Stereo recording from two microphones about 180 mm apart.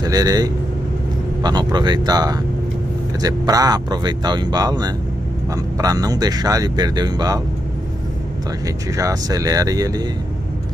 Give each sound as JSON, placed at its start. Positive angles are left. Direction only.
{"t": 0.0, "sound": "speech", "side_deg": -20}
{"t": 8.6, "sound": "speech", "side_deg": -20}